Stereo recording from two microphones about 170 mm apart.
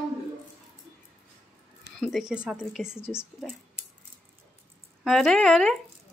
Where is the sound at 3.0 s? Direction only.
15° left (ahead or behind).